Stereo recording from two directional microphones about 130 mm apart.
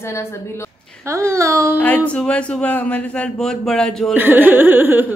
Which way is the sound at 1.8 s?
10° left (ahead or behind).